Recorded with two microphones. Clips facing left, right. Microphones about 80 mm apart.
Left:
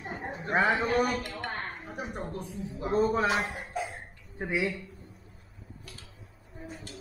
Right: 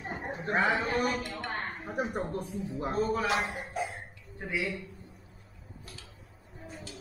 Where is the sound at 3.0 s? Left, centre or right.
Left.